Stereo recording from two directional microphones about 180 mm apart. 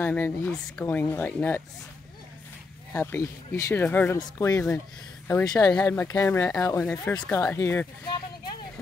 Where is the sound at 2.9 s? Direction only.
15° left (ahead or behind).